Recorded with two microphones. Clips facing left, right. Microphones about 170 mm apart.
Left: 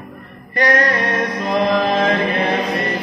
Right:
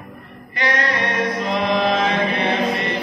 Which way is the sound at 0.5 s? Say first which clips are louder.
Left 6 dB; 45° left (ahead or behind).